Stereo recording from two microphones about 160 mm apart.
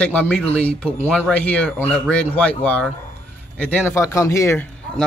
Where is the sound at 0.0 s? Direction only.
10° left (ahead or behind).